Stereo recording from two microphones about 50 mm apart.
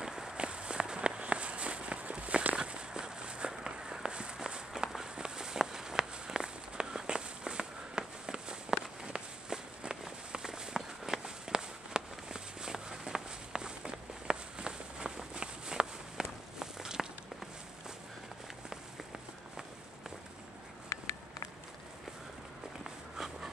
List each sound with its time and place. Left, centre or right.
0.0 s walk: centre
20.9 s walk: left
22.8 s walk: centre